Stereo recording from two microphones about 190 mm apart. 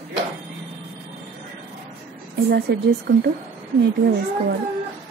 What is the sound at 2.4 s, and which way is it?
Speech, 60° right (ahead or behind).